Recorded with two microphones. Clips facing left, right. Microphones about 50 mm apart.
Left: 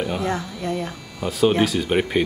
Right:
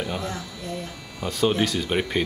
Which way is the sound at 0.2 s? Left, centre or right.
Left.